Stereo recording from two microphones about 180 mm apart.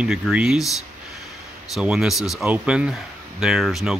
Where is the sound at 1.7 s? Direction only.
5° right (ahead or behind).